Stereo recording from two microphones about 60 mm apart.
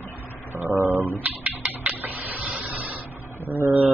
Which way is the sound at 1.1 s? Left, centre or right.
Right.